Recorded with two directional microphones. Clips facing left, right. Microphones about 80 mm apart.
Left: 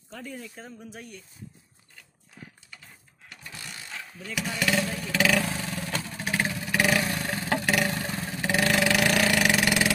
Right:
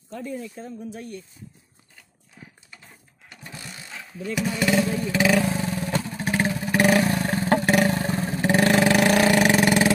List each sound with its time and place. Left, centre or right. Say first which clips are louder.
2.7 s a sound: right 1 dB; right
3.6 s vehicle: left 3 dB; centre
4.4 s speech: right 4 dB; right
4.7 s vehicle: right 6 dB; centre
5.1 s speech: right 3 dB; centre
5.6 s vehicle: right 6 dB; right